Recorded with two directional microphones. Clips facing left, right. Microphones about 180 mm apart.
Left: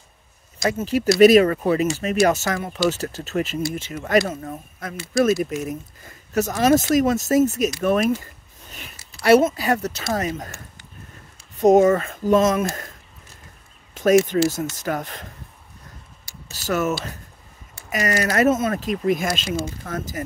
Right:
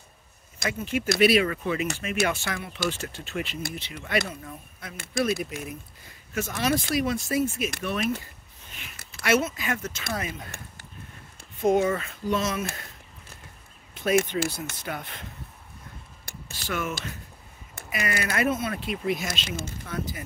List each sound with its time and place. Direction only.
0.7 s speech: 40° left (ahead or behind)
9.2 s speech: 40° left (ahead or behind)
11.6 s speech: 45° left (ahead or behind)
14.3 s speech: 50° left (ahead or behind)
16.5 s speech: 40° left (ahead or behind)